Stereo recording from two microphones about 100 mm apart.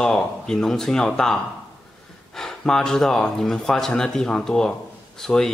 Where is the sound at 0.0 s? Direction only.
5° left (ahead or behind).